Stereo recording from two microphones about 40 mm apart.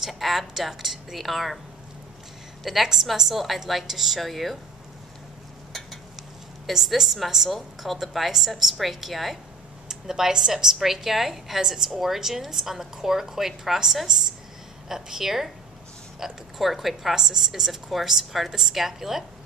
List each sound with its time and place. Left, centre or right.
0.0 s a woman's voice: centre
2.6 s a woman's voice: centre
6.1 s a woman's voice: centre
9.8 s a woman's voice: centre